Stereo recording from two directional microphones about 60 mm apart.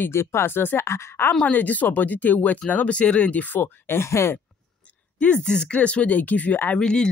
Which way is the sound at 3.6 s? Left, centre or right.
Left.